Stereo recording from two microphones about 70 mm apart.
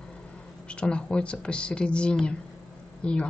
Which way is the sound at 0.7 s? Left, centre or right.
Centre.